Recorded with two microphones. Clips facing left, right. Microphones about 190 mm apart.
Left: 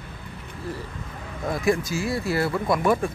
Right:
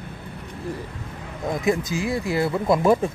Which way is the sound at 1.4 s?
20° right (ahead or behind).